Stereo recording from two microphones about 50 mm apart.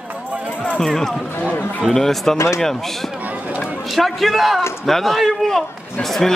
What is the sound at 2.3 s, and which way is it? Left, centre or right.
Speech, left.